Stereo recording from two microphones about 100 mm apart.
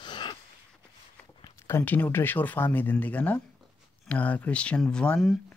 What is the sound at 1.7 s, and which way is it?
Speech, 20° left (ahead or behind).